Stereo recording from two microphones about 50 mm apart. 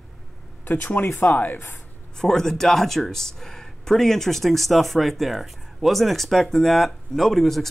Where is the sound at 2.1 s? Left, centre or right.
Centre.